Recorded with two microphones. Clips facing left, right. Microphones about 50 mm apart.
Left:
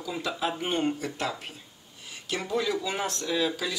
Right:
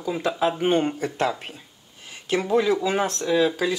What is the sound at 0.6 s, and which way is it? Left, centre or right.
Speech, right.